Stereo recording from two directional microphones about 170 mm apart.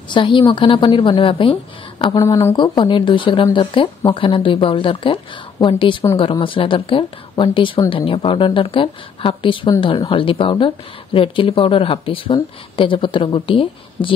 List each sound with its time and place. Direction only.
0.1 s a woman's voice: 30° left (ahead or behind)